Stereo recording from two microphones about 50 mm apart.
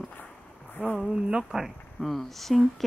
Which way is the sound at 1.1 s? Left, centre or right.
Centre.